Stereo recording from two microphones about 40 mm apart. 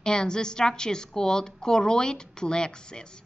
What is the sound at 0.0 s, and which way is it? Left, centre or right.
A woman's voice, centre.